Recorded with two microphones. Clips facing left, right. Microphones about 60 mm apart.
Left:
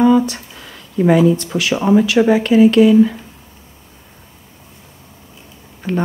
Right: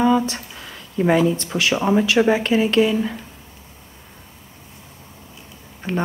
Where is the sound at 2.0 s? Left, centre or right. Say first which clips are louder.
Left 4 dB; right.